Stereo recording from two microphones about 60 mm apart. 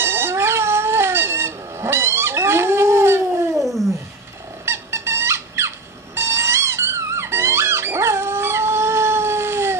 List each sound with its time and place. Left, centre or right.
0.0 s cat: right
3.6 s a sound: centre
4.6 s squeak: right
6.1 s music: right